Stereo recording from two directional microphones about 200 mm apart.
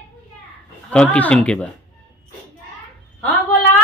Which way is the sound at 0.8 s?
5° left (ahead or behind).